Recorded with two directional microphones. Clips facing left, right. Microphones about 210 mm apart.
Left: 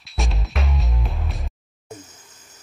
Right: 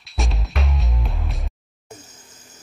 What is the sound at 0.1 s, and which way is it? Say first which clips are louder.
Music: even; centre (ahead or behind).